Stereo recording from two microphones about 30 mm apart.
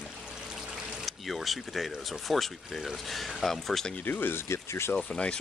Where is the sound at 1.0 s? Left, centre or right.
Centre.